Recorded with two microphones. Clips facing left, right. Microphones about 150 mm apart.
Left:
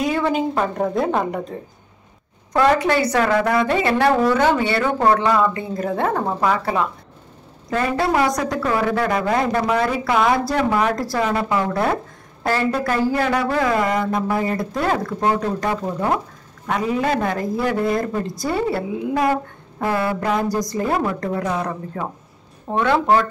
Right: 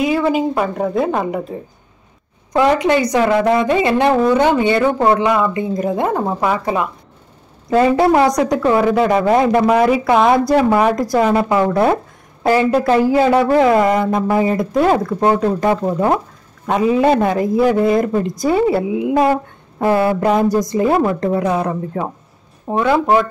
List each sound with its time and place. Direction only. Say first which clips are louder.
0.0 s a woman's voice: right 4 dB; 5° right (ahead or behind)
2.5 s a woman's voice: right 3 dB; 15° right (ahead or behind)
22.7 s a woman's voice: right 3 dB; 15° right (ahead or behind)